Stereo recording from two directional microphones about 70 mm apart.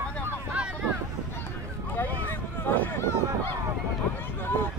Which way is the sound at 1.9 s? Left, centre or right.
Left.